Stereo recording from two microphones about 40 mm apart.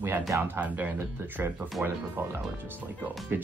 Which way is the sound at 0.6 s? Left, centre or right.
Right.